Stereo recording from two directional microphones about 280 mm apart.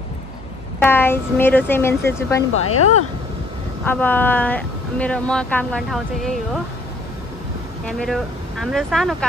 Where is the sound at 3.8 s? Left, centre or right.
Centre.